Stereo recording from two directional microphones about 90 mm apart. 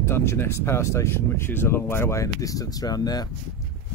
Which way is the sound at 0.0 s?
30° left (ahead or behind).